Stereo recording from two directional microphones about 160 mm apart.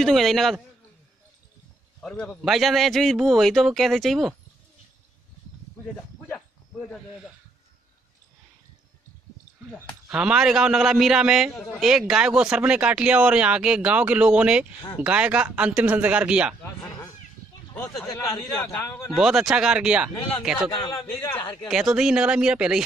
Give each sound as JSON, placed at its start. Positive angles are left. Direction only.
{"t": 0.0, "sound": "a man's voice", "side_deg": 0}
{"t": 2.0, "sound": "a man's voice", "side_deg": 5}
{"t": 10.0, "sound": "a man's voice", "side_deg": -5}
{"t": 16.6, "sound": "a sound", "side_deg": 15}
{"t": 18.0, "sound": "a man's voice", "side_deg": 20}
{"t": 19.1, "sound": "a man's voice", "side_deg": -5}
{"t": 20.7, "sound": "a man's voice", "side_deg": 30}
{"t": 21.0, "sound": "a man's voice", "side_deg": 15}
{"t": 21.6, "sound": "a man's voice", "side_deg": -5}